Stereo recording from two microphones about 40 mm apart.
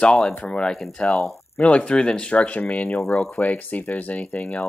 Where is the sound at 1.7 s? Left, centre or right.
Left.